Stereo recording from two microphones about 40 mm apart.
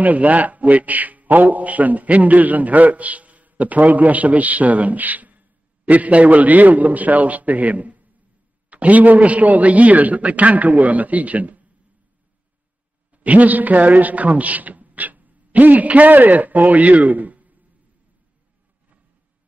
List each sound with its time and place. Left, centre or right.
0.0 s a man's voice: right
13.1 s a man's voice: right